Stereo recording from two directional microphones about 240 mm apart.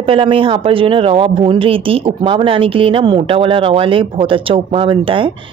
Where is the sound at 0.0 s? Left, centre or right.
Right.